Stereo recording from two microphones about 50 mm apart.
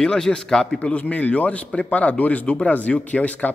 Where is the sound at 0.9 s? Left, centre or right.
Left.